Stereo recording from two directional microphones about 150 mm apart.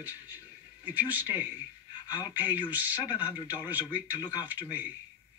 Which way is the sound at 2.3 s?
10° right (ahead or behind).